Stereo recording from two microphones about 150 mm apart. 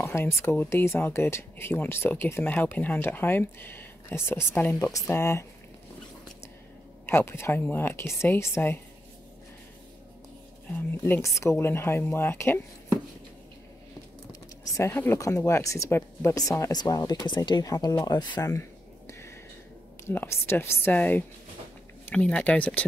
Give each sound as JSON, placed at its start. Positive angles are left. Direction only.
{"t": 0.4, "sound": "speech", "side_deg": 15}
{"t": 7.1, "sound": "speech", "side_deg": 15}
{"t": 11.1, "sound": "speech", "side_deg": 20}
{"t": 14.6, "sound": "speech", "side_deg": 15}